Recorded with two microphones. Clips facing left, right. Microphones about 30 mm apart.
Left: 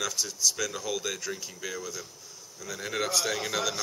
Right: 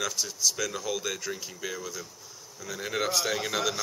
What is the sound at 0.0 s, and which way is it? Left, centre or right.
Speech, centre.